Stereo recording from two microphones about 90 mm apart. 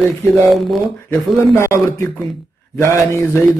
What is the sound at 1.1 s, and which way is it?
A man's voice, 30° left (ahead or behind).